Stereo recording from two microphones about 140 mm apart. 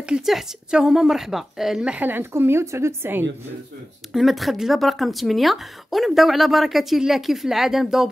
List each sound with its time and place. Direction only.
0.0 s a woman's voice: 5° right (ahead or behind)
4.1 s a woman's voice: centre (ahead or behind)